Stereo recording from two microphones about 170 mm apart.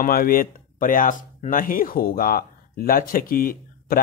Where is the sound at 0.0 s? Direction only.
60° left (ahead or behind).